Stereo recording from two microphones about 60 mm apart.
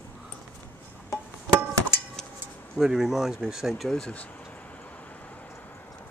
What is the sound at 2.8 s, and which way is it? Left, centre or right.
Speech, centre.